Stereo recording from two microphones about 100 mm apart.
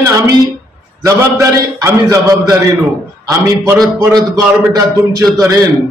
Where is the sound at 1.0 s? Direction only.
30° right (ahead or behind).